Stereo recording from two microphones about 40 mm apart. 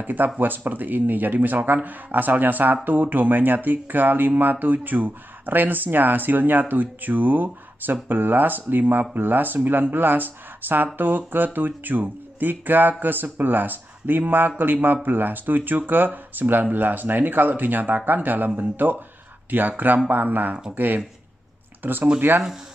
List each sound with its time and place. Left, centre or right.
0.0 s speech: right